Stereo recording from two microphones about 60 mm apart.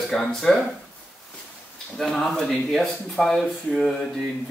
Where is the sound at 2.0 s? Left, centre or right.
Centre.